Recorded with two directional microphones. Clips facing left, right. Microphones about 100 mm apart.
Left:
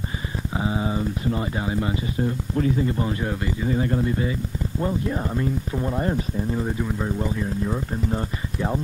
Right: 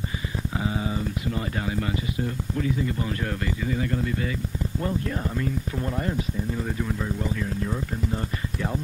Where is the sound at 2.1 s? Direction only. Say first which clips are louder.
Left 4 dB; 40° left (ahead or behind).